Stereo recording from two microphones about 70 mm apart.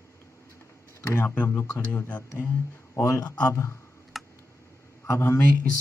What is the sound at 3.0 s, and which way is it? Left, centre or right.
Speech, left.